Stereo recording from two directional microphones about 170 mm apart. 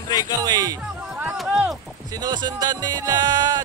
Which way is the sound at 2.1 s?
25° right (ahead or behind).